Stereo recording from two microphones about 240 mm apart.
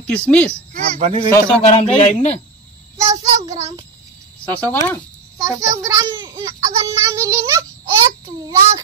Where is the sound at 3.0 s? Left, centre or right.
Centre.